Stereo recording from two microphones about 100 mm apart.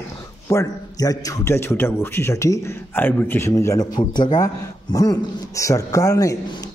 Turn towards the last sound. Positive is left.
turn(degrees=35)  # may be behind; listen again after turning